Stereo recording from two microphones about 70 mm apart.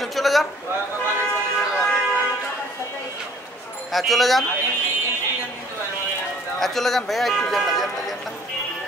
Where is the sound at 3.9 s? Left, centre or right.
Centre.